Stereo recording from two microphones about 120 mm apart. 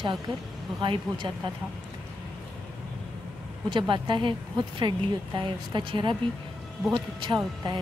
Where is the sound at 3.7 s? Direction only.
40° right (ahead or behind).